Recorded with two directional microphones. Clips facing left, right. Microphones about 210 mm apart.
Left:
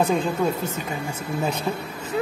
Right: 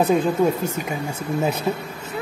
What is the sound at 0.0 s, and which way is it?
Speech, 10° right (ahead or behind).